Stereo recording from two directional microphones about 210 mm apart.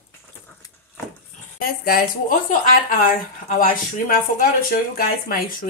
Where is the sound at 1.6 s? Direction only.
45° left (ahead or behind).